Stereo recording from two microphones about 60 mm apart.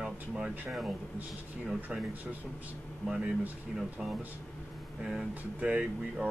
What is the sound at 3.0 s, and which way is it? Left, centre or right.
Speech, centre.